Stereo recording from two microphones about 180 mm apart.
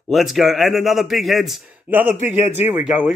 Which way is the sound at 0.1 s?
Centre (ahead or behind).